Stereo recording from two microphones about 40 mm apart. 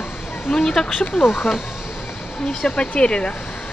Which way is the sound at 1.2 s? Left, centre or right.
Left.